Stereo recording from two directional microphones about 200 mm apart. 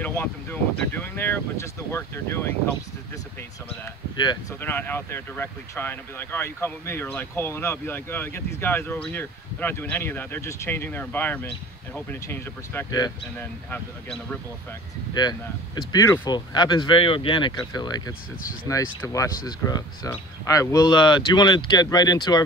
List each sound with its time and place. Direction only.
0.0 s speech: 10° left (ahead or behind)
4.2 s speech: 20° left (ahead or behind)
4.6 s speech: 10° left (ahead or behind)
15.1 s speech: 20° left (ahead or behind)